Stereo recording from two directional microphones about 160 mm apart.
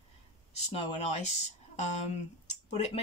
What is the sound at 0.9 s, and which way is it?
Speech, 45° left (ahead or behind).